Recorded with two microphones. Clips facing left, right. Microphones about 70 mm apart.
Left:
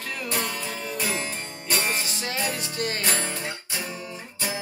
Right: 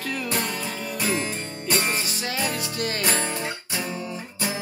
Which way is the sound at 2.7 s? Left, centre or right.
Left.